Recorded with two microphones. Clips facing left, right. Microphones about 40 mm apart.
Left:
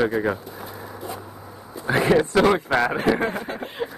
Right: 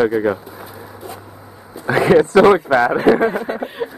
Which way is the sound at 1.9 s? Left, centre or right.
Right.